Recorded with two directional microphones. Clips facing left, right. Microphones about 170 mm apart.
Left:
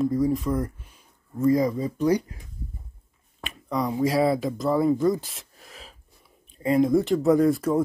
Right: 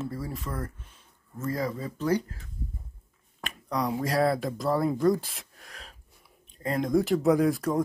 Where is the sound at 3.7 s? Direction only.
Centre (ahead or behind).